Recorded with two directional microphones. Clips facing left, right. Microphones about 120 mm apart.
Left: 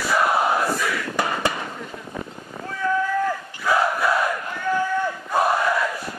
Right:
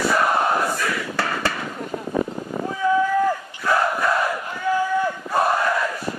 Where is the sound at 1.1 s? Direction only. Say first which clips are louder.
Left 3 dB; 15° left (ahead or behind).